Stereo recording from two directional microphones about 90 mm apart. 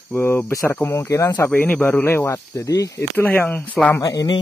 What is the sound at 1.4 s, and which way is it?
Speech, 20° left (ahead or behind).